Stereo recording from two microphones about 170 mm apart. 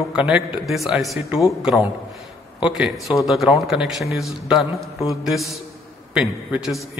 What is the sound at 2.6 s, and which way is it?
A man's voice, 5° right (ahead or behind).